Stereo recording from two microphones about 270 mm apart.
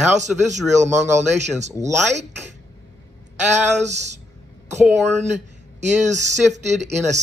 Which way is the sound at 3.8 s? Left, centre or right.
Right.